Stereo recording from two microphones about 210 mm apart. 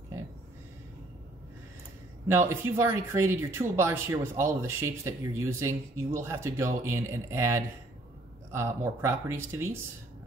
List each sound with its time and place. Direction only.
2.2 s speech: 10° right (ahead or behind)